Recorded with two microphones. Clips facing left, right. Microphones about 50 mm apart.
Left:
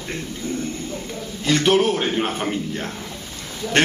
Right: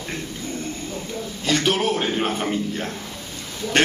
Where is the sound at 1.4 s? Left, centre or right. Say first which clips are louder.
Left 4 dB; left.